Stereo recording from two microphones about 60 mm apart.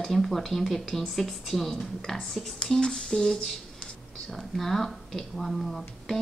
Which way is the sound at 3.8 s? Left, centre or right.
Centre.